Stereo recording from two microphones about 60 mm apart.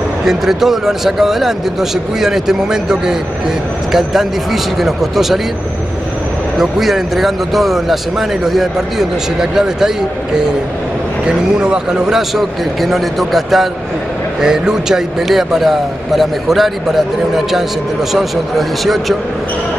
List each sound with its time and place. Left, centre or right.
0.2 s a man's voice: centre
6.6 s a man's voice: centre
11.2 s a man's voice: centre
18.1 s a man's voice: centre